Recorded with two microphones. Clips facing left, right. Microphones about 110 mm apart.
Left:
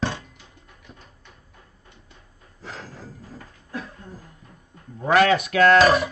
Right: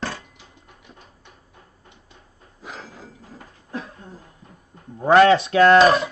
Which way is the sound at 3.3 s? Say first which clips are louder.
Right 1 dB; 20° right (ahead or behind).